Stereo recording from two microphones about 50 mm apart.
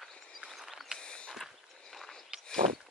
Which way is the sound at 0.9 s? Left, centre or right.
Centre.